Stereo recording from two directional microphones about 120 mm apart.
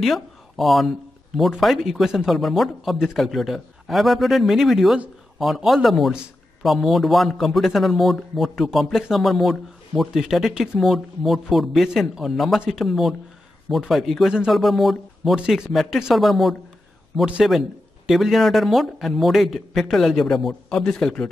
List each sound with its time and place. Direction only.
0.0 s a man's voice: centre (ahead or behind)